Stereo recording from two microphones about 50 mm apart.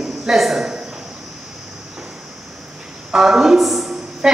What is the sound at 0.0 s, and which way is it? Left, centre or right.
Speech, centre.